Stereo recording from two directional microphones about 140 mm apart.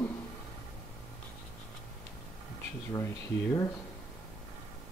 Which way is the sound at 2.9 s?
20° left (ahead or behind).